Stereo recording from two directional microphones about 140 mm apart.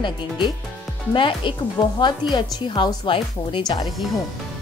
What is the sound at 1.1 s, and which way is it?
Speech, 35° left (ahead or behind).